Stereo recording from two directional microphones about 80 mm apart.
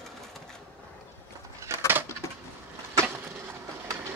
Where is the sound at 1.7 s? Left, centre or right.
Right.